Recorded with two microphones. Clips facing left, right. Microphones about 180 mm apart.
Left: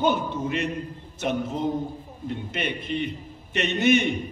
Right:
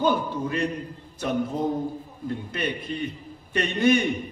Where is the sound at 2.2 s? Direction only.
25° left (ahead or behind).